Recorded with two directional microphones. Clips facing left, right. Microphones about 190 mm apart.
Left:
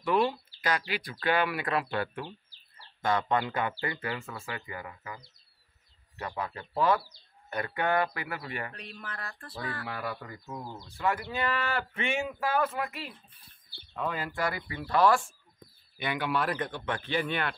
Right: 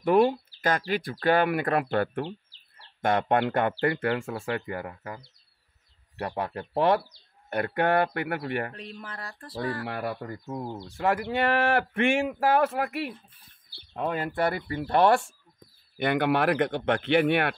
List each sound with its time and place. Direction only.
0.0 s speech: 50° right (ahead or behind); by 4.4 s 75° right (ahead or behind)
4.5 s speech: 60° right (ahead or behind)
8.7 s speech: 35° right (ahead or behind)
9.8 s speech: 55° right (ahead or behind)
11.1 s speech: 70° right (ahead or behind)
13.9 s speech: 50° right (ahead or behind)